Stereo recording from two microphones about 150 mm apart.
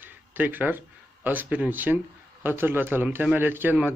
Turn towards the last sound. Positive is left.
turn(degrees=-10)  # may be behind; listen again after turning